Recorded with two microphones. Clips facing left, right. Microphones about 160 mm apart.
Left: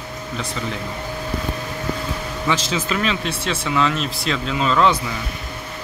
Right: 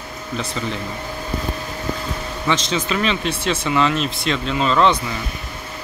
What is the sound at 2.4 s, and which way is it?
Speech, 5° left (ahead or behind).